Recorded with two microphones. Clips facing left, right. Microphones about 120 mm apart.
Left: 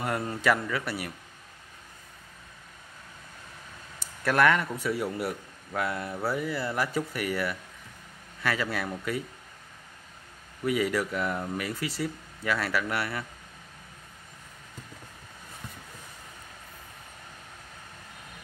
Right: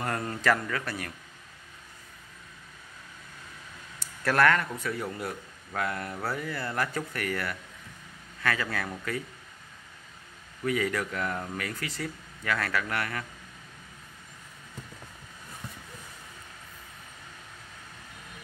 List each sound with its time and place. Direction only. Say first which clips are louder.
0.0 s speech: left 1 dB; 5° left (ahead or behind)
4.4 s speech: even; 20° left (ahead or behind)
5.1 s speech: left 3 dB; 5° left (ahead or behind)
10.6 s speech: left 2 dB; 20° left (ahead or behind)